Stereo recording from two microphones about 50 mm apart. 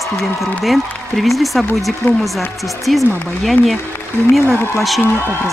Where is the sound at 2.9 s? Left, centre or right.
Centre.